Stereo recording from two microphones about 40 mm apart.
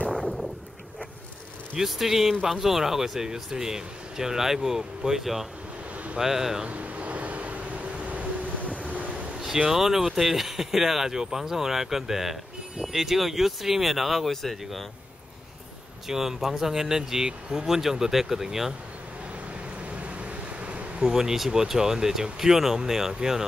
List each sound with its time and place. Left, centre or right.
1.8 s speech: centre
6.7 s vehicle: right
9.7 s speech: centre
16.1 s speech: centre
19.9 s a sound: right
21.0 s speech: centre